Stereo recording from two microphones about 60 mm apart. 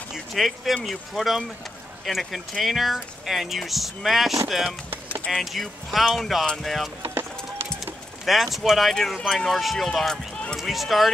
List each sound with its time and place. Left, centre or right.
0.1 s speech: centre
5.3 s speech: centre
7.0 s vehicle: right
7.8 s bird: centre
8.9 s speech: centre